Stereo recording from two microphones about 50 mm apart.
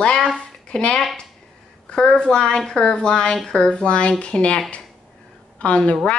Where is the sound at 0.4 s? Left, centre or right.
Left.